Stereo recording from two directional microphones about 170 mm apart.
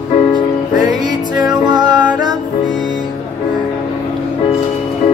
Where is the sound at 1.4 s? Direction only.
25° right (ahead or behind).